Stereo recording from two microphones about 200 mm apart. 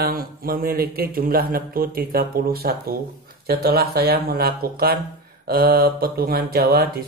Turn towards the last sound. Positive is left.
turn(degrees=-50)  # may be behind; listen again after turning